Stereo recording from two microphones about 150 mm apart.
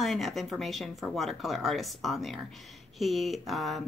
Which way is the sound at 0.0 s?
Centre (ahead or behind).